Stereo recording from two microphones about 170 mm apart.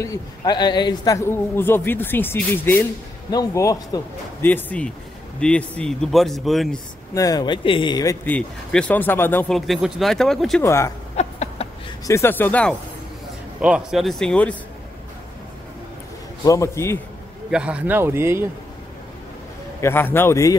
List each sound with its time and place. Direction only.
0.0 s a man's voice: 20° left (ahead or behind); by 6.8 s centre (ahead or behind)
7.2 s speech: 20° left (ahead or behind)
8.3 s a man's voice: 5° left (ahead or behind)
9.5 s speech: centre (ahead or behind)
10.6 s a man's voice: 15° left (ahead or behind)
11.1 s a sound: 40° left (ahead or behind)
12.1 s a man's voice: 15° left (ahead or behind)
13.6 s speech: 5° right (ahead or behind)
16.4 s a man's voice: 20° left (ahead or behind)
17.5 s a man's voice: 5° right (ahead or behind)
19.8 s a man's voice: 15° left (ahead or behind)